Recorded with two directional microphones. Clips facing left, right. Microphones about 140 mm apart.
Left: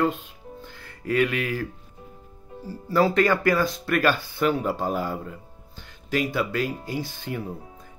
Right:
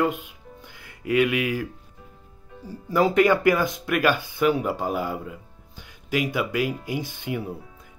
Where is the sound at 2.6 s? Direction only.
15° right (ahead or behind).